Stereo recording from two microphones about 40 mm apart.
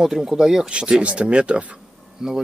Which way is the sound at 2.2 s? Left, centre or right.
Centre.